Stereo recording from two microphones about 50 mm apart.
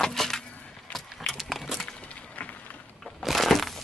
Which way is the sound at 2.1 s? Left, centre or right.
Left.